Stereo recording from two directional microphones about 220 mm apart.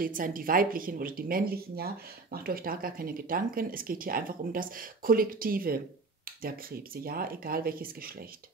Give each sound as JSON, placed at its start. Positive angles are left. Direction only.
{"t": 0.0, "sound": "speech", "side_deg": -40}
{"t": 7.0, "sound": "speech", "side_deg": -40}